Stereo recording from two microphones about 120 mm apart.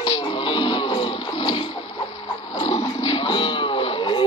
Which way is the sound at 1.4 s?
45° left (ahead or behind).